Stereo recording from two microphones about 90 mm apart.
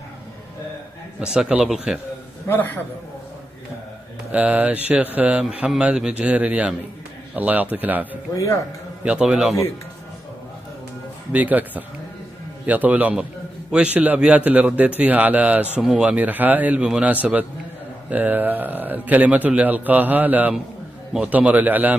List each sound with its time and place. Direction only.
1.2 s a man's voice: 10° right (ahead or behind)
2.4 s a man's voice: 25° left (ahead or behind)
4.3 s a man's voice: 15° right (ahead or behind)
11.3 s a man's voice: 20° right (ahead or behind)